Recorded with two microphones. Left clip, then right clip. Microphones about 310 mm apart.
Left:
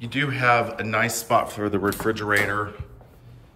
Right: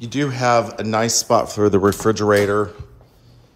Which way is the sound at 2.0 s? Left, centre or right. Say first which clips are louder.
Right 6 dB; left.